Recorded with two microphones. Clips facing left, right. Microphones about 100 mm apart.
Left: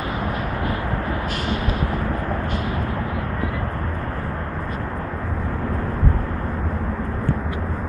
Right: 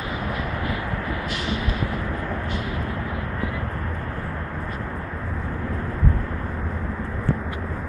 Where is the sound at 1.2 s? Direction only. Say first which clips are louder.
Left 3 dB; 45° left (ahead or behind).